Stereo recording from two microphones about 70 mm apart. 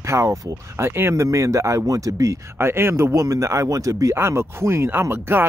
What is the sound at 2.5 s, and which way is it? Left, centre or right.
Speech, right.